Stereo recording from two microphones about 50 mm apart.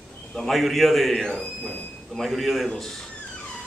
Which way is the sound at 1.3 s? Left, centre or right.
Centre.